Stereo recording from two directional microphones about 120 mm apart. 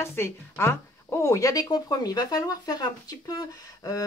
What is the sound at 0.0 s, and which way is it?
Speech, 20° left (ahead or behind).